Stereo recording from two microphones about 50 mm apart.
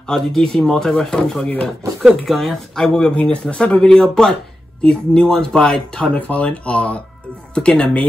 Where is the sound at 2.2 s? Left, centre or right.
Centre; by 3.8 s left.